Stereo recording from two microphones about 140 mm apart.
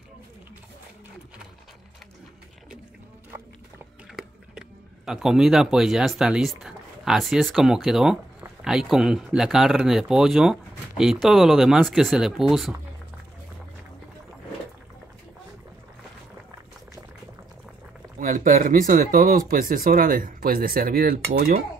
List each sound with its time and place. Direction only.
4.1 s speech: 5° right (ahead or behind)
18.2 s speech: 75° right (ahead or behind)